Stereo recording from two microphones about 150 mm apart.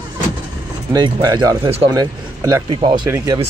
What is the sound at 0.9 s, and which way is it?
Speech, 30° right (ahead or behind).